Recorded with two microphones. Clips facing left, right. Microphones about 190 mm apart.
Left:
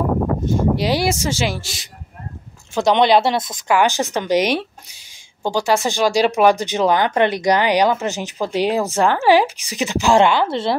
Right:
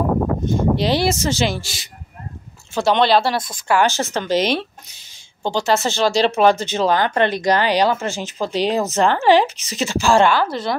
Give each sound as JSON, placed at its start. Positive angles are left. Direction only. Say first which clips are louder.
{"t": 0.7, "sound": "speech", "louder": "right 1 dB", "side_deg": 10}
{"t": 2.7, "sound": "speech", "louder": "left 2 dB", "side_deg": 15}